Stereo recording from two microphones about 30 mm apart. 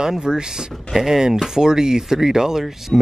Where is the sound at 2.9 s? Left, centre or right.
Centre.